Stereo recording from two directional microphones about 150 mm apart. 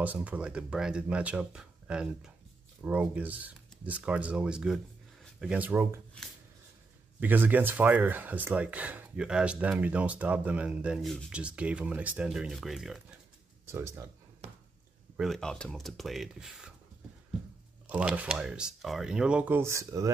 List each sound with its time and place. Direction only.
0.0 s speech: 10° right (ahead or behind)
7.2 s speech: 10° right (ahead or behind)
13.7 s speech: 15° right (ahead or behind)
15.1 s speech: centre (ahead or behind)
17.8 s speech: 10° right (ahead or behind)